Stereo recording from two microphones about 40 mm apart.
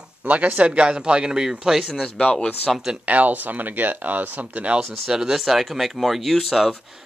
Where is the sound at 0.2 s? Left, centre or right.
Right; by 1.9 s centre.